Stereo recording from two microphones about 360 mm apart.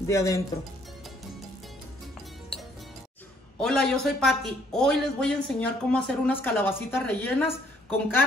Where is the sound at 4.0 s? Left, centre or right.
Centre.